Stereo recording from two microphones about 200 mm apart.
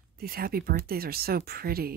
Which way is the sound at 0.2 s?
50° right (ahead or behind).